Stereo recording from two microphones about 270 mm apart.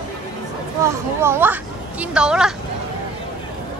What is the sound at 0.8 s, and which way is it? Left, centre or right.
Speech, centre.